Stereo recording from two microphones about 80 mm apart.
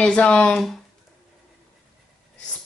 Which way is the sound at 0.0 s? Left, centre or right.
Centre.